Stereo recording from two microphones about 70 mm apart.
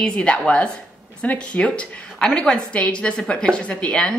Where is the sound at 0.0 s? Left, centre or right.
Centre.